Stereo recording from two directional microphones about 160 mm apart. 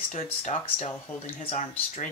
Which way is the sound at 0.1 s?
40° left (ahead or behind).